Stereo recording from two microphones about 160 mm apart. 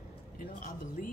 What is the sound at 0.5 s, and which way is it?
Speech, 55° left (ahead or behind).